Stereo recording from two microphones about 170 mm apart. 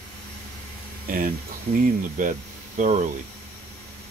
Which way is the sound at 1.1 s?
55° right (ahead or behind).